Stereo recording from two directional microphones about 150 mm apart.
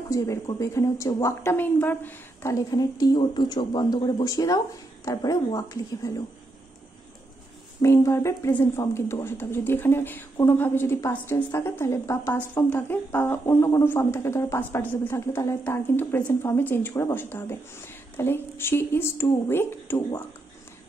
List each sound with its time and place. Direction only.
0.1 s a woman's voice: 20° left (ahead or behind)
2.7 s a woman's voice: 25° left (ahead or behind)
7.8 s speech: 20° left (ahead or behind)